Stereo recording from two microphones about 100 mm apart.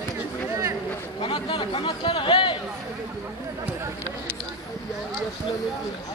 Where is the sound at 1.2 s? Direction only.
60° left (ahead or behind).